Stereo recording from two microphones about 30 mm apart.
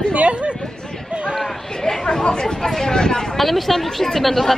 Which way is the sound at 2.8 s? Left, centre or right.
Left.